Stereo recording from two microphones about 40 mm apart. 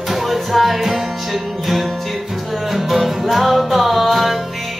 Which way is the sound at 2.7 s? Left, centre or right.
Centre.